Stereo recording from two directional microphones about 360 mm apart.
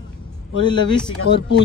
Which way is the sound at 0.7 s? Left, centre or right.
Centre.